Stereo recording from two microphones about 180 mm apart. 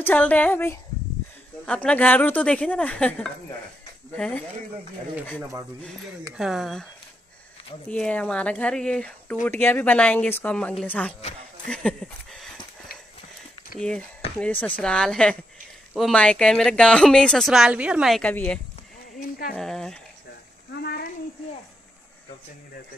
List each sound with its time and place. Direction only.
0.0 s speech: 10° left (ahead or behind)
6.3 s speech: centre (ahead or behind)
7.9 s speech: 5° left (ahead or behind)
11.6 s a sound: 5° left (ahead or behind)
13.7 s speech: 5° left (ahead or behind)
20.7 s a sound: 65° left (ahead or behind)